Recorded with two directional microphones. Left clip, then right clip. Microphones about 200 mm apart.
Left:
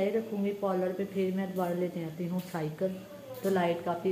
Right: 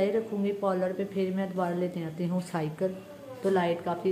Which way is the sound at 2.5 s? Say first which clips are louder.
Right 2 dB; 30° right (ahead or behind).